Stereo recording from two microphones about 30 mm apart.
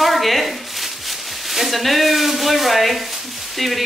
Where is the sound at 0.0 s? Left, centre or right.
Centre.